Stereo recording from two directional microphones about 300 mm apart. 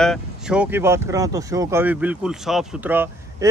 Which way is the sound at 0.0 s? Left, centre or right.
Centre.